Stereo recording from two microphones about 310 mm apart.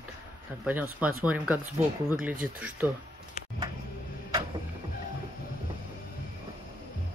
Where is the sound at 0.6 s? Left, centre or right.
Centre.